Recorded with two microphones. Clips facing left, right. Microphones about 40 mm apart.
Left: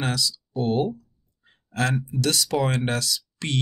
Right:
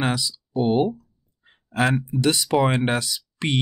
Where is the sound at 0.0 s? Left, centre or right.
Right.